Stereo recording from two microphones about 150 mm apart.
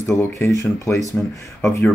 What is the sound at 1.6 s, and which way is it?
Speech, 20° left (ahead or behind).